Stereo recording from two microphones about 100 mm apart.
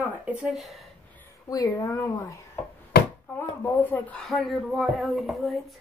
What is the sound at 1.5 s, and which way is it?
Speech, 35° left (ahead or behind).